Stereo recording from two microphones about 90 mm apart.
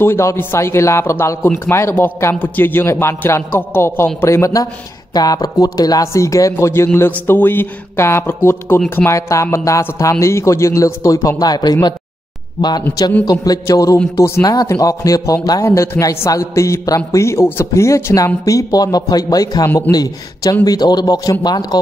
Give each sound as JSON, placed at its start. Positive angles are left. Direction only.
{"t": 0.0, "sound": "a man's voice", "side_deg": 30}
{"t": 13.2, "sound": "a man's voice", "side_deg": 40}
{"t": 14.1, "sound": "a man's voice", "side_deg": 30}
{"t": 14.4, "sound": "a man's voice", "side_deg": 45}